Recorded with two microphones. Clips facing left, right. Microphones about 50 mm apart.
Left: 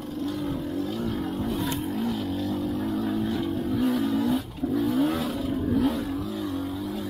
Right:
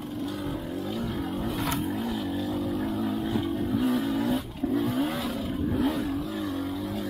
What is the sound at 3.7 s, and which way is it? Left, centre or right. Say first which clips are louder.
Music: left 2 dB; centre.